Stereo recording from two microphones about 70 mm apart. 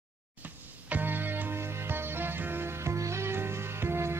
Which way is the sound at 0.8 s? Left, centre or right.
Right.